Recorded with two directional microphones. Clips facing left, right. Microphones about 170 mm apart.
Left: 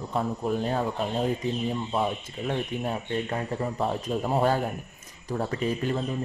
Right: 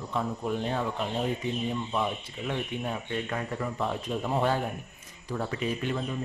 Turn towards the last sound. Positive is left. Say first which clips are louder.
# left 3 dB
turn(degrees=40)  # may be behind; listen again after turning